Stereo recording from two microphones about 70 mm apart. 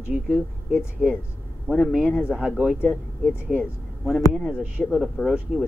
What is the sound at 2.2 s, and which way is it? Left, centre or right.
Speech, centre.